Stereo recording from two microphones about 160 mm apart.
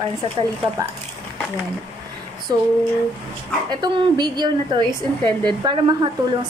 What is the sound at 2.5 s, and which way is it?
Speech, 25° right (ahead or behind).